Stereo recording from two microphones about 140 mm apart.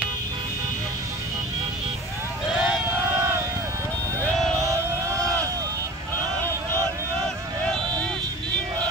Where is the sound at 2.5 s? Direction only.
5° right (ahead or behind).